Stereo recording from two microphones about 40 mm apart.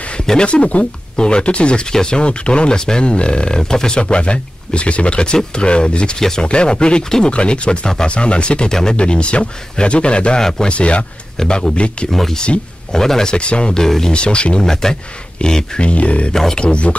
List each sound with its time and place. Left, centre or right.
0.4 s speech: left
4.0 s speech: left
11.3 s speech: centre
12.1 s speech: centre
12.4 s speech: centre
13.8 s speech: centre
14.1 s speech: left
14.6 s speech: centre
15.9 s speech: left